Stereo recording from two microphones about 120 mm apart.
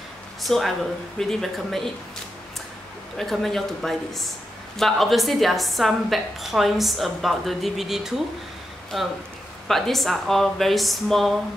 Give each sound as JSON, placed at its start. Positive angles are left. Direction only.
{"t": 0.4, "sound": "a woman's voice", "side_deg": 0}
{"t": 3.2, "sound": "a woman's voice", "side_deg": 0}